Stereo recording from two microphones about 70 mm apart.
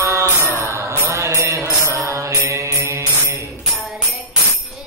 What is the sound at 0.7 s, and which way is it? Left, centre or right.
Mantra, right.